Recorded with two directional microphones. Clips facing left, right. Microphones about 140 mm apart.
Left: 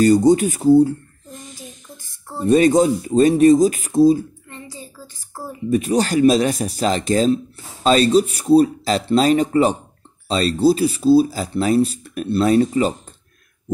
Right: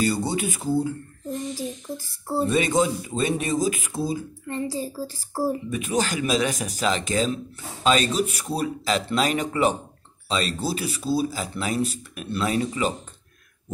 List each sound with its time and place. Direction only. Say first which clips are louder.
0.0 s speech: left 11 dB; 40° left (ahead or behind)
1.5 s a sound: right 9 dB; 35° right (ahead or behind)
2.4 s speech: left 9 dB; 40° left (ahead or behind)
4.5 s a child's voice: right 9 dB; 35° right (ahead or behind)
5.7 s speech: left 7 dB; 40° left (ahead or behind)